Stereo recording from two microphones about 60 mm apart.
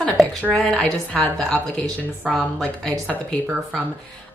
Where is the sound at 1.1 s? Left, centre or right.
Left.